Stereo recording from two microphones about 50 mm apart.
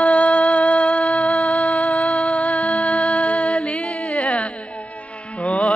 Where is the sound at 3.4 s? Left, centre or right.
Centre.